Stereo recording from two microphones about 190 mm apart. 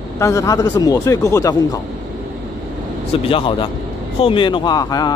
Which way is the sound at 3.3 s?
25° left (ahead or behind).